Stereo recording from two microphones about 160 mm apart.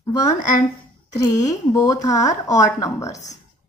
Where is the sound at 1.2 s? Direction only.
20° left (ahead or behind).